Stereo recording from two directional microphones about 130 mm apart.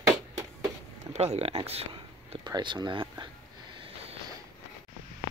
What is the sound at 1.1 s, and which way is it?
Speech, 55° right (ahead or behind).